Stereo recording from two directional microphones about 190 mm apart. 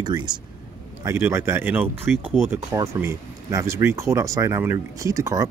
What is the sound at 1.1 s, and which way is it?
Speech, 15° right (ahead or behind).